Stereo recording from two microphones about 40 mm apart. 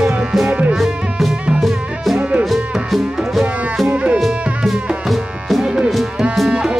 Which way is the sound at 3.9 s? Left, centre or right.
Right.